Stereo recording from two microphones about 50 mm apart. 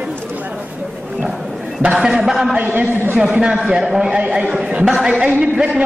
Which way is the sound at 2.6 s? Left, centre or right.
Right.